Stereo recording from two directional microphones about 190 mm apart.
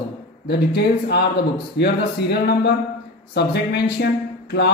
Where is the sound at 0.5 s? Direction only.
60° left (ahead or behind).